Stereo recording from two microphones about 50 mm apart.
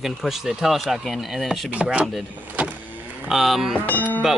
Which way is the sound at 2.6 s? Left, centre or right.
Right.